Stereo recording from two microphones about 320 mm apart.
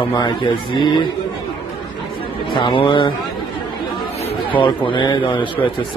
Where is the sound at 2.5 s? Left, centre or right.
Centre.